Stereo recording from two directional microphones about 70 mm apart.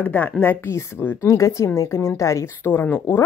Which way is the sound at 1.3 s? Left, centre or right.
Left.